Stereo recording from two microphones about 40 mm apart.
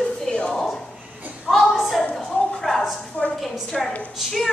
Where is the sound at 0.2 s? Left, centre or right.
Left.